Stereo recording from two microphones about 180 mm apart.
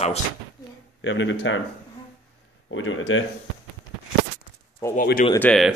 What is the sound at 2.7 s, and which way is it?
Speech, 90° left.